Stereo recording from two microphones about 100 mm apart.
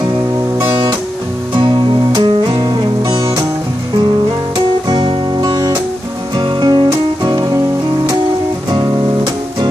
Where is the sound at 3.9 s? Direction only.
45° right (ahead or behind).